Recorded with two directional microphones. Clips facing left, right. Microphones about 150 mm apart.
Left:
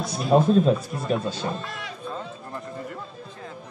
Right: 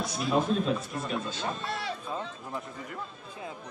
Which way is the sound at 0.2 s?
40° left (ahead or behind).